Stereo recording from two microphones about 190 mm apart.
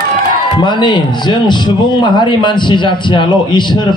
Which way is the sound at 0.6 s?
25° left (ahead or behind).